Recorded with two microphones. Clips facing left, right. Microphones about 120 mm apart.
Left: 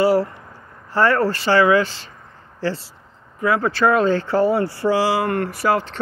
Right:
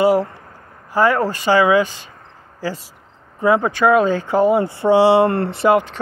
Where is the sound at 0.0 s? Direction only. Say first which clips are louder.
Right 2 dB; 20° right (ahead or behind).